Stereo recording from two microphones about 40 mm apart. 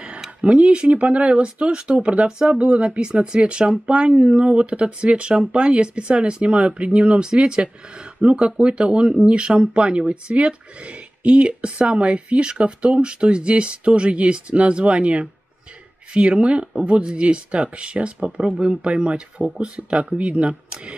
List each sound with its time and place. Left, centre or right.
0.4 s speech: right
2.2 s speech: centre
4.1 s speech: centre
4.4 s speech: right
7.2 s speech: centre